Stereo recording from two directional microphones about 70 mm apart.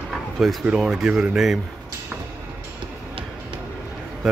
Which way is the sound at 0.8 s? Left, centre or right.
Centre.